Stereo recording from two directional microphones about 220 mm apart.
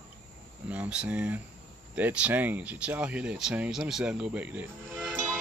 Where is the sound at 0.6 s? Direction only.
5° right (ahead or behind).